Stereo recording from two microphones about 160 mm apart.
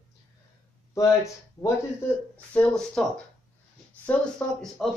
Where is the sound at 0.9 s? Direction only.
20° left (ahead or behind).